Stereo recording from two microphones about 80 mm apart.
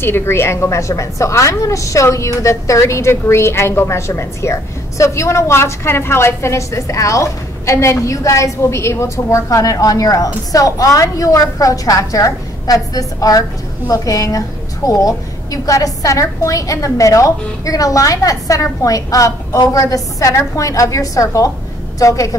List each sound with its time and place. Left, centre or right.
0.0 s a woman's voice: left